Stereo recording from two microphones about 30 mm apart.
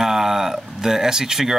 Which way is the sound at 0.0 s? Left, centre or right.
Centre.